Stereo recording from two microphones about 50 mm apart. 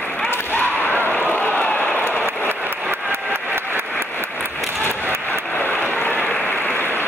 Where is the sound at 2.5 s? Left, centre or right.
Right.